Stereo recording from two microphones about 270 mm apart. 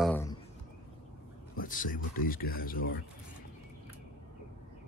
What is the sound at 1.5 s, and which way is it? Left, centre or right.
Speech, left.